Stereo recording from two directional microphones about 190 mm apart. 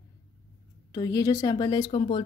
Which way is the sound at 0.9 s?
20° left (ahead or behind).